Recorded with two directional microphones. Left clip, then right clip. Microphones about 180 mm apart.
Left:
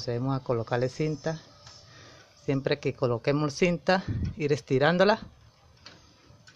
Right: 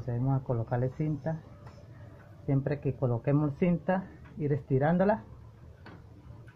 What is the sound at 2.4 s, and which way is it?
Speech, 50° left (ahead or behind).